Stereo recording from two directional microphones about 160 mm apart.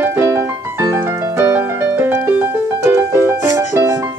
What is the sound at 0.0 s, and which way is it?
Music, 15° right (ahead or behind).